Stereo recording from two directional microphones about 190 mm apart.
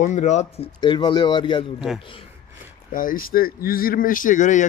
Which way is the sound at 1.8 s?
Centre (ahead or behind).